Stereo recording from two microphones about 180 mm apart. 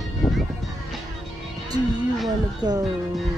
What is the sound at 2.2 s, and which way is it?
Speech, 20° right (ahead or behind).